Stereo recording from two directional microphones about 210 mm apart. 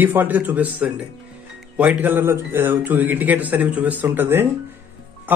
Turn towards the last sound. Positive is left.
turn(degrees=-10)  # may be behind; listen again after turning